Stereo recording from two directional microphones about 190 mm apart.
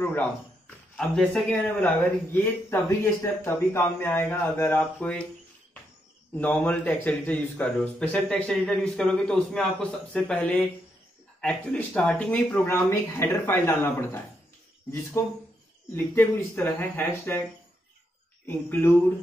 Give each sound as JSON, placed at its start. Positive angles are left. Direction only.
{"t": 0.0, "sound": "a man's voice", "side_deg": 10}
{"t": 6.3, "sound": "a man's voice", "side_deg": 10}
{"t": 18.5, "sound": "a man's voice", "side_deg": 10}